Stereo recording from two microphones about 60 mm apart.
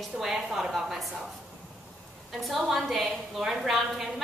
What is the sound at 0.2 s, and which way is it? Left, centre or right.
Speech, centre.